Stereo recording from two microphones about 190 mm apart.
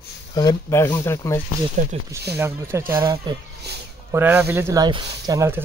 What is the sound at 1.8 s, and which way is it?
Speech, 40° right (ahead or behind).